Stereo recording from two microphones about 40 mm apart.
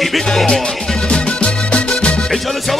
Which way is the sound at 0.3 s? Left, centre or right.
Centre.